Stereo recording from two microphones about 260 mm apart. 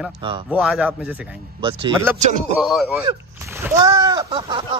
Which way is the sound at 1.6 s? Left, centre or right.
Centre.